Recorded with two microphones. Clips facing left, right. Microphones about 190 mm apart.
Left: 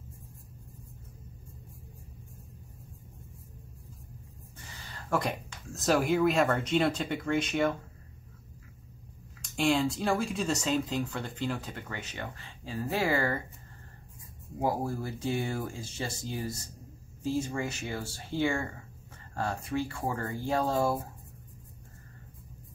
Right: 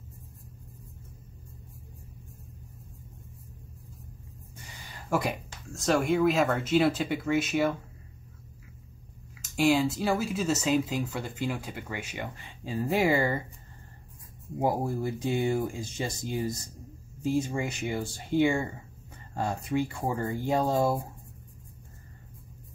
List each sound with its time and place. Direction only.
4.8 s speech: 10° right (ahead or behind)
9.4 s speech: 5° right (ahead or behind)
14.6 s speech: 20° right (ahead or behind)